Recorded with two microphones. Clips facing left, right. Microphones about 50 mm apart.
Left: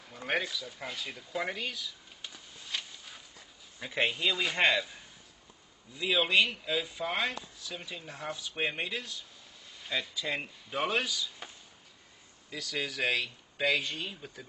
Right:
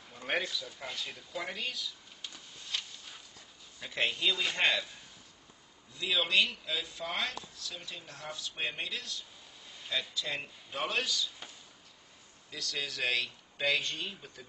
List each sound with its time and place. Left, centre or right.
0.3 s speech: centre
1.5 s a sound: centre
3.8 s speech: centre